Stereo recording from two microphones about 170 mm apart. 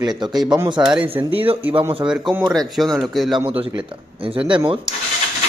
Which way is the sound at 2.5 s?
Centre (ahead or behind).